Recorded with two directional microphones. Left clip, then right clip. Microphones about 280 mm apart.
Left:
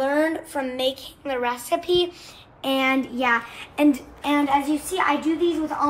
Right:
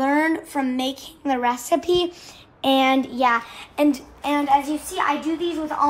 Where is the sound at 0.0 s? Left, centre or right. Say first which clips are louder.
Right 1 dB; right.